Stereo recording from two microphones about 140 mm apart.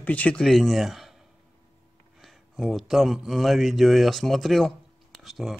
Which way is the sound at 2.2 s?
Centre (ahead or behind).